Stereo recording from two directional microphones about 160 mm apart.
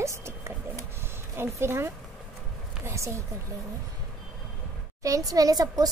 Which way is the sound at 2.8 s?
15° right (ahead or behind).